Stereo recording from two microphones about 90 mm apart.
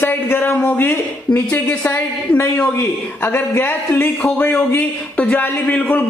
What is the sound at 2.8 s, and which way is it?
A man's voice, 25° left (ahead or behind).